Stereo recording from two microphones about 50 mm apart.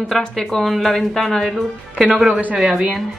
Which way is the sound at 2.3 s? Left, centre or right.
Right.